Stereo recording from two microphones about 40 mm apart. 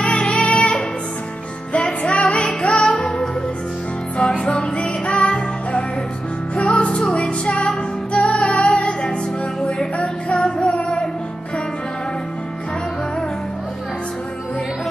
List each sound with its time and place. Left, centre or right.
0.0 s music: left
4.5 s music: left